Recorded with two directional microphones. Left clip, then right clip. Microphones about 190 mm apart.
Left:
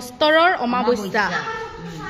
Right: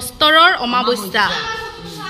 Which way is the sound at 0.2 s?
10° left (ahead or behind).